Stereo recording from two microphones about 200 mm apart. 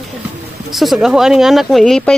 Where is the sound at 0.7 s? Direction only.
Centre (ahead or behind).